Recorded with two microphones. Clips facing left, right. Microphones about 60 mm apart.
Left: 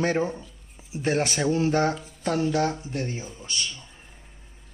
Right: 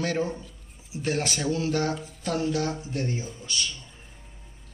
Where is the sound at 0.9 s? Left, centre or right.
Left.